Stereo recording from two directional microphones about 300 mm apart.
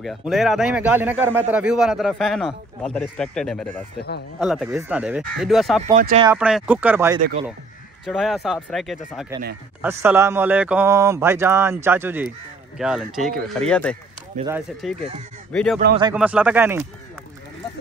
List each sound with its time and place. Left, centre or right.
0.0 s a man's voice: centre
5.9 s speech: right
6.2 s a man's voice: centre
9.8 s a sound: centre
12.7 s a man's voice: centre
16.0 s a man's voice: centre